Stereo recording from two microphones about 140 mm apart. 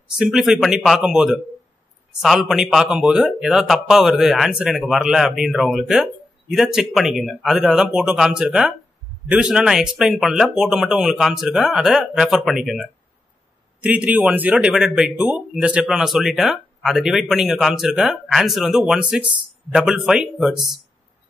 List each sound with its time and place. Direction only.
0.2 s a man's voice: 5° right (ahead or behind)